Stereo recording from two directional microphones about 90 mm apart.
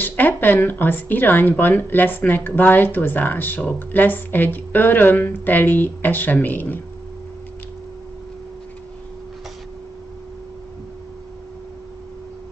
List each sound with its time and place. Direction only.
0.0 s speech: 20° left (ahead or behind)